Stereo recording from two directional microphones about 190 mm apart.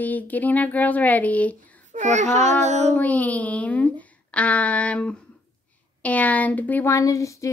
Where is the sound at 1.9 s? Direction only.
40° right (ahead or behind).